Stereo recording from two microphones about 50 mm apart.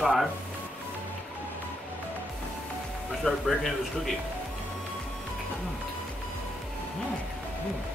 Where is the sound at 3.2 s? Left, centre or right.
Centre.